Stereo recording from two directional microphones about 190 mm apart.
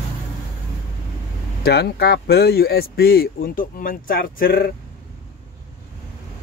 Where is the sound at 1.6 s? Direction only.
55° left (ahead or behind).